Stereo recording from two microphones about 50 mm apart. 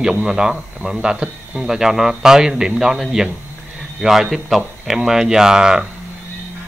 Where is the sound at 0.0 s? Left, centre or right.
Centre.